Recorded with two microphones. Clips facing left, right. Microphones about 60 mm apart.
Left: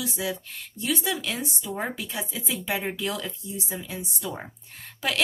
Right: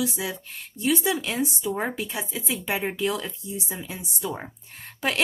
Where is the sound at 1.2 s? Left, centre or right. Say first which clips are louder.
Right 5 dB; right.